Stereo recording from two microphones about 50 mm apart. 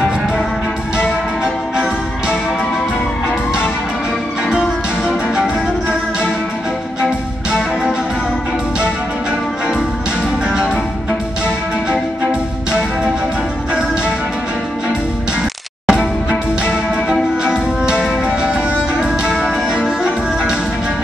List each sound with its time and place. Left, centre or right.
4.6 s music: centre
10.5 s music: centre
15.9 s music: centre